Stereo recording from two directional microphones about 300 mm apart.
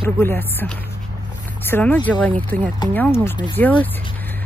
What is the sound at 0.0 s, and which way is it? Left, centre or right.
Speech, centre.